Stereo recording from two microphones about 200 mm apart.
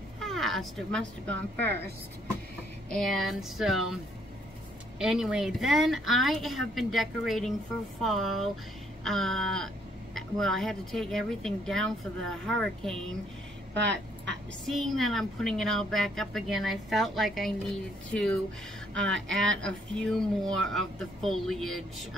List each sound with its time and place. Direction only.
0.2 s speech: centre (ahead or behind)
2.9 s speech: centre (ahead or behind)
13.8 s a sound: 60° right (ahead or behind)
14.7 s speech: centre (ahead or behind)